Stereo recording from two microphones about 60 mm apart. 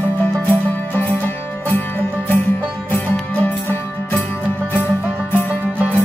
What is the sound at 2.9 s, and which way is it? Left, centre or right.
Music, left.